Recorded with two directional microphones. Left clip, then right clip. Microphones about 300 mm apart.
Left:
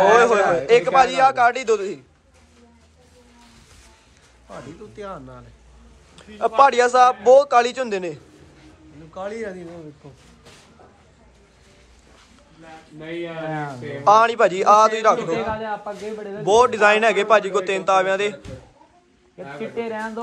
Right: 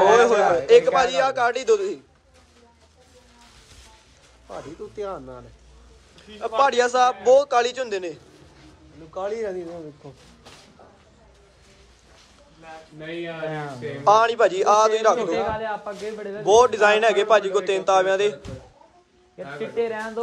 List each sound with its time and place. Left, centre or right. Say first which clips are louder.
0.1 s a sound: left 1 dB; centre
0.7 s a man's voice: left 1 dB; centre
4.5 s speech: right 2 dB; right
6.1 s a man's voice: left 5 dB; centre
9.1 s speech: right 2 dB; right
13.5 s speech: left 2 dB; centre
14.0 s a man's voice: left 2 dB; centre
16.4 s a man's voice: left 1 dB; centre
19.3 s speech: right 2 dB; centre